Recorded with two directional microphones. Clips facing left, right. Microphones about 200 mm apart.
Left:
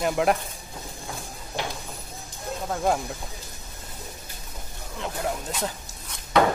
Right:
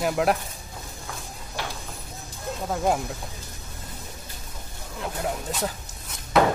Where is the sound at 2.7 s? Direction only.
5° right (ahead or behind).